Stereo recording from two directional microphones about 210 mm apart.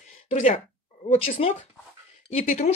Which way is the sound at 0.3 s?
30° left (ahead or behind).